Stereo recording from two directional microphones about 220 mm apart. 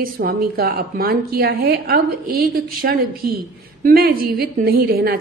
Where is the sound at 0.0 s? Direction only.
40° right (ahead or behind).